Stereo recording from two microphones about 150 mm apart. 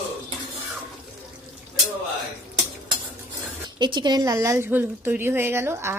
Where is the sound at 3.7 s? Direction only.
30° right (ahead or behind).